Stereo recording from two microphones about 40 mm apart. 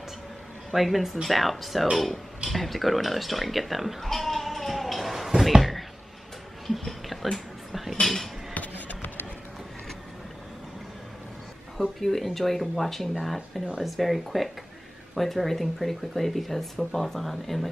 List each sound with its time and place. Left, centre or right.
0.7 s speech: centre
2.5 s bleat: centre
5.6 s a sound: centre
8.5 s music: left
12.0 s speech: centre